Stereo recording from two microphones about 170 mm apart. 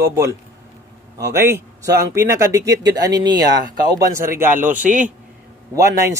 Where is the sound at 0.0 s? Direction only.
15° right (ahead or behind).